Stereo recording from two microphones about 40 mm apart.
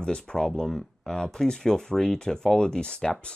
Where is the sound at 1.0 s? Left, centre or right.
Centre.